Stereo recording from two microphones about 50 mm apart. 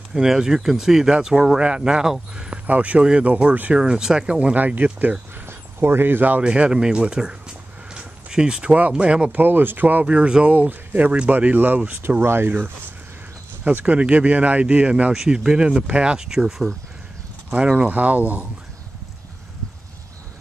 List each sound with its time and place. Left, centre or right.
0.1 s speech: centre
2.3 s a sound: centre
2.6 s speech: right
5.5 s speech: right
6.4 s speech: right
7.9 s a sound: centre
8.7 s speech: right
9.4 s speech: right
10.0 s speech: right
12.2 s speech: right
12.4 s speech: right
13.9 s speech: right
15.1 s speech: centre
17.7 s speech: right